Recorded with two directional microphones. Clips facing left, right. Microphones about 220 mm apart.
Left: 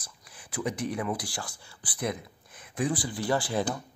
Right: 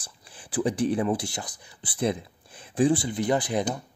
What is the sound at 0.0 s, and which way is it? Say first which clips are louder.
Speech: right 3 dB; 30° right (ahead or behind).